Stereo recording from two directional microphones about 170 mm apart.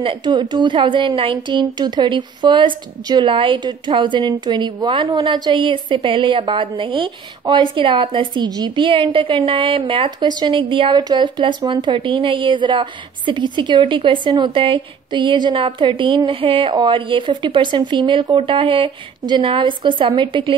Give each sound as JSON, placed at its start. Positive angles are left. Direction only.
{"t": 0.0, "sound": "a woman's voice", "side_deg": -30}